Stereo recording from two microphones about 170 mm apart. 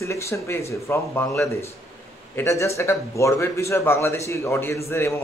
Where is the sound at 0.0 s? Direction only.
15° left (ahead or behind).